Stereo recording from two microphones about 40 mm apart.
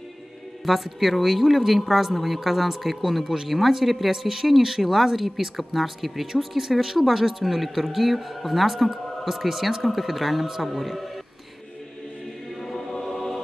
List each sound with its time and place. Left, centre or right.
0.7 s speech: centre
12.6 s music: centre